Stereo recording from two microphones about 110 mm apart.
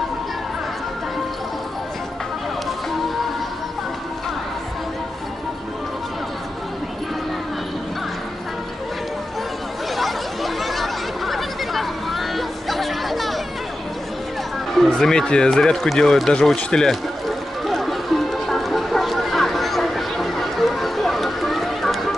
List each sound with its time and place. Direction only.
9.9 s a sound: centre (ahead or behind)
14.7 s speech: 5° left (ahead or behind)
17.6 s music: centre (ahead or behind)